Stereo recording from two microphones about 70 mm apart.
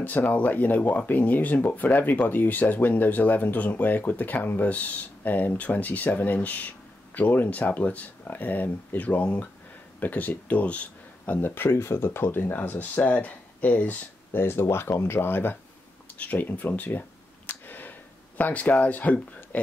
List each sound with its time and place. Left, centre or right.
0.0 s speech: left
17.5 s a sound: left
18.4 s speech: left